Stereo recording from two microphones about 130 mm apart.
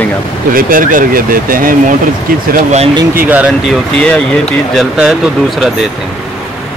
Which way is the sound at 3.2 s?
10° right (ahead or behind).